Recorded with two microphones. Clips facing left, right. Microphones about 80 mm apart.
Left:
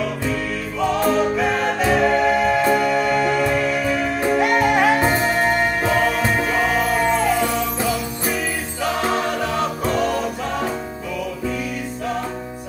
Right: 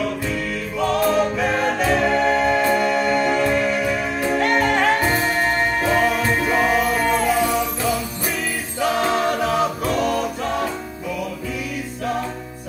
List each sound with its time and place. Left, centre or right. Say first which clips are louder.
0.7 s choir: even; centre
2.9 s music: even; centre
4.4 s music: left 1 dB; centre
9.0 s music: right 2 dB; centre